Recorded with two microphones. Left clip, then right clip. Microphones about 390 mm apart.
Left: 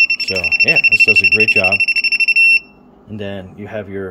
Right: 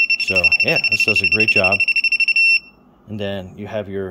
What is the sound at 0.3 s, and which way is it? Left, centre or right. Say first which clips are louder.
Speech: left 2 dB; centre.